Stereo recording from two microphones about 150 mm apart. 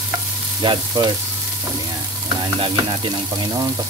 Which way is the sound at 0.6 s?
30° right (ahead or behind).